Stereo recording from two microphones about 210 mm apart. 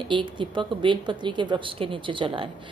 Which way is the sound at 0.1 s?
25° right (ahead or behind).